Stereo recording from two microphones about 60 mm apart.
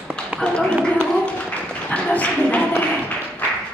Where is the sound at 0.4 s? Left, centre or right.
Centre.